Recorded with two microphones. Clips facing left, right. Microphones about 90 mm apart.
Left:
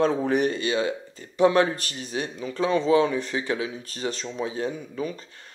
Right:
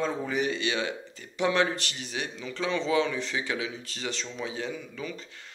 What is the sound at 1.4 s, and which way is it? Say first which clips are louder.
Speech: left 6 dB; 35° left (ahead or behind).